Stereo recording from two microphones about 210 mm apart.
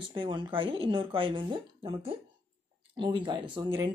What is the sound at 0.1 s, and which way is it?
Speech, 25° right (ahead or behind).